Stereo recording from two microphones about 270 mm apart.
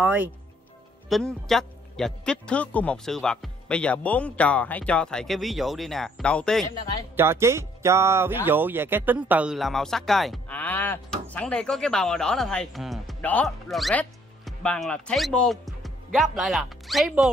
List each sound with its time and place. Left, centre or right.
0.0 s speech: centre
7.2 s speech: centre